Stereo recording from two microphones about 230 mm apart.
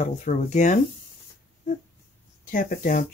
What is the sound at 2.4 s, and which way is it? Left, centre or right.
Speech, left.